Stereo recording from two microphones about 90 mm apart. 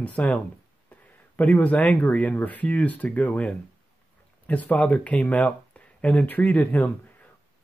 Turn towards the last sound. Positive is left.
turn(degrees=15)  # may be behind; listen again after turning